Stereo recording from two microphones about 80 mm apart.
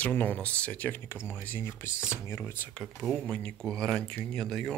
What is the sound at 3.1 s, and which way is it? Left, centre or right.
Speech, centre.